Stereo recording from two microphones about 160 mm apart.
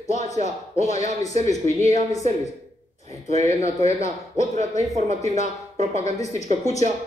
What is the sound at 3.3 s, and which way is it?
A man's voice, 40° right (ahead or behind).